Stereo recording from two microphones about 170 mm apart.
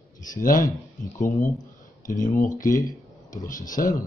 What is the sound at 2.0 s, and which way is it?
Speech, 50° left (ahead or behind).